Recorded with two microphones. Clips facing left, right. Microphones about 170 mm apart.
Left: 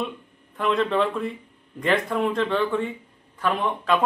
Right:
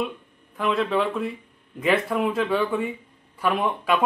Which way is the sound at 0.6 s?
Centre (ahead or behind).